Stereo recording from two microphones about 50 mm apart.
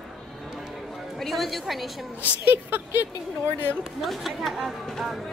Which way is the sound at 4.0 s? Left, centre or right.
Centre.